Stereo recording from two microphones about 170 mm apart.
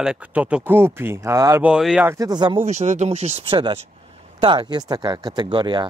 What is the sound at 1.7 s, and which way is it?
Speech, 5° right (ahead or behind).